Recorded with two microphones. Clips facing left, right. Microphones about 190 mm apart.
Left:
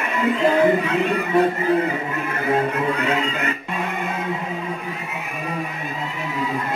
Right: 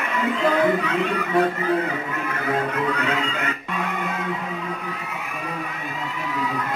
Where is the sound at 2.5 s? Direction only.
25° left (ahead or behind).